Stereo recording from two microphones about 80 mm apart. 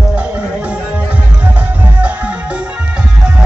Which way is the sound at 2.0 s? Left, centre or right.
Centre.